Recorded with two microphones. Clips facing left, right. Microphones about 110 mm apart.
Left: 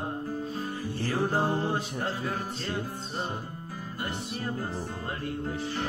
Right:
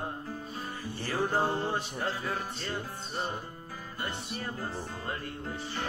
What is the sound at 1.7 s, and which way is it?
Music, 45° left (ahead or behind).